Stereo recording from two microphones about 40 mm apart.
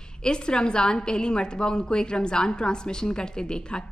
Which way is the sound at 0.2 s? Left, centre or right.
Left.